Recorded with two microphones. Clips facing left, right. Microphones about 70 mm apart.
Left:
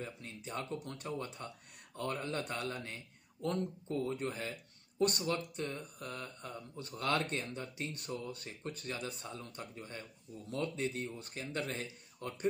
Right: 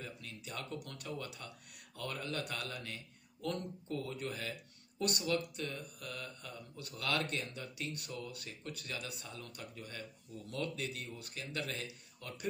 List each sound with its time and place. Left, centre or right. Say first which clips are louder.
0.0 s a man's voice: left 3 dB; left